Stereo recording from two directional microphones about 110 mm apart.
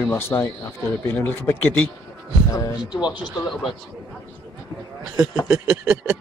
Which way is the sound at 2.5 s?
35° left (ahead or behind).